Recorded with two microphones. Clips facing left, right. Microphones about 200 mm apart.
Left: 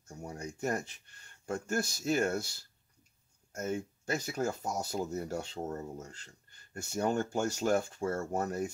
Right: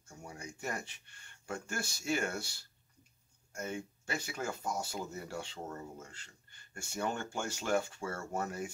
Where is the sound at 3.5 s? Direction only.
40° left (ahead or behind).